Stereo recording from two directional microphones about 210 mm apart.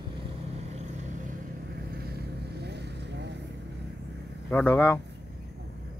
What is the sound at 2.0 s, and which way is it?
Vehicle, 50° right (ahead or behind).